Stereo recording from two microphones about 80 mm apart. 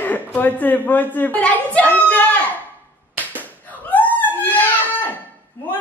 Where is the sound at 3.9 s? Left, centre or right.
Left.